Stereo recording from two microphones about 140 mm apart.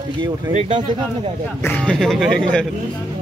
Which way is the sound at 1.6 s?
10° left (ahead or behind).